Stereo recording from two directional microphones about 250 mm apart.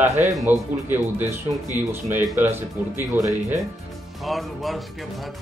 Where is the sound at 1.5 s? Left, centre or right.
Centre.